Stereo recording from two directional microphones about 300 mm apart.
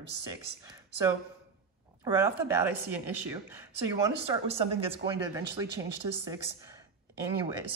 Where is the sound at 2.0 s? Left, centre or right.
Centre.